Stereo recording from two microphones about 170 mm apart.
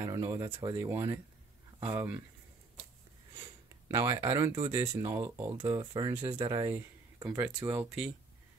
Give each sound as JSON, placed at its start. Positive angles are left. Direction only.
{"t": 0.0, "sound": "speech", "side_deg": -20}
{"t": 3.9, "sound": "speech", "side_deg": -20}
{"t": 7.4, "sound": "speech", "side_deg": -10}